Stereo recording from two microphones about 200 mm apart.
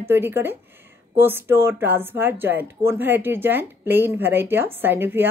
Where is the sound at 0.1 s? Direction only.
10° right (ahead or behind).